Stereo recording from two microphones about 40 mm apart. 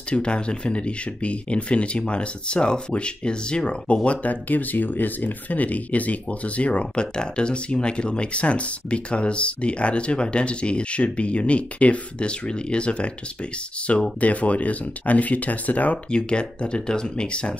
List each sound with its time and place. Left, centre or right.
0.1 s speech: left
16.1 s speech: left